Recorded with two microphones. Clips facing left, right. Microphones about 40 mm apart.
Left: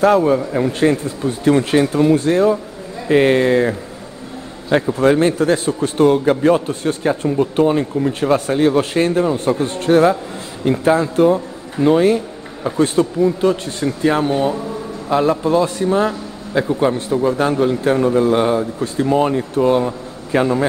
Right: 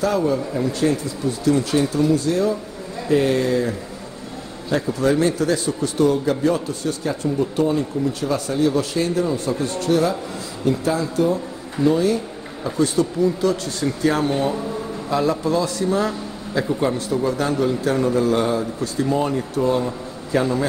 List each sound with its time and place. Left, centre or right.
0.0 s a man's voice: left
14.3 s speech: centre
15.0 s a man's voice: left